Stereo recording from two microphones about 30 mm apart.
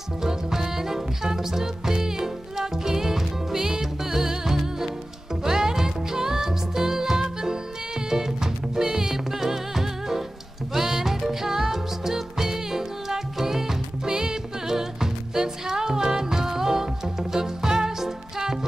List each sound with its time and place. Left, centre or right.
0.2 s music: centre